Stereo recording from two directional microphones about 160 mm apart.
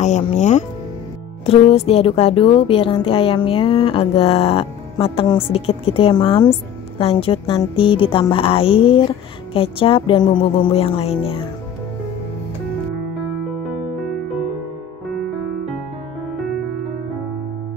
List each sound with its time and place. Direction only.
0.0 s speech: 45° left (ahead or behind)